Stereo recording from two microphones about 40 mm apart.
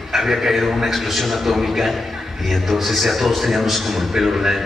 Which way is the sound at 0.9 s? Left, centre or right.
Centre.